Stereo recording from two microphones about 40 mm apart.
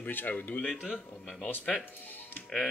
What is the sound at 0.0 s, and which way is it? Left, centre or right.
Speech, left.